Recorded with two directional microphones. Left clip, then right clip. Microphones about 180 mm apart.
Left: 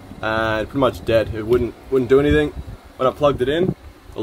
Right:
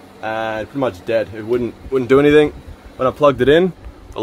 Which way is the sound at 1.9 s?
70° right (ahead or behind).